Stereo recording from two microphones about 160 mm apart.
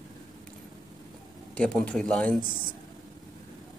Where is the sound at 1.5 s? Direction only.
5° left (ahead or behind).